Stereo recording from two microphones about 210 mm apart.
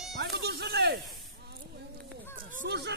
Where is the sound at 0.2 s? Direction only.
50° right (ahead or behind).